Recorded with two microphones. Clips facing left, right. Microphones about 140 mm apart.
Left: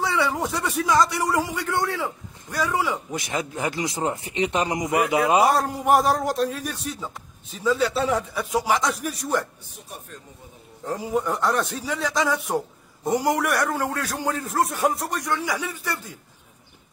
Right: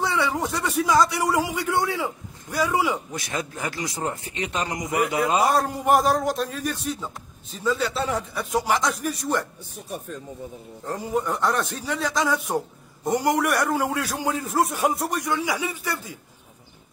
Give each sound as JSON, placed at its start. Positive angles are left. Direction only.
{"t": 0.0, "sound": "a man's voice", "side_deg": 0}
{"t": 3.1, "sound": "speech", "side_deg": 15}
{"t": 5.5, "sound": "a man's voice", "side_deg": 0}
{"t": 10.9, "sound": "a man's voice", "side_deg": 0}